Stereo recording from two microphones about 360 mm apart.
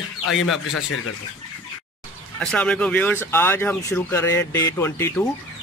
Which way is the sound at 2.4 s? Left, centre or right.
Centre.